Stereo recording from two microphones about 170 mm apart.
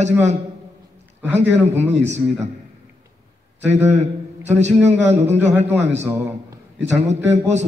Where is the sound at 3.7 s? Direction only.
40° right (ahead or behind).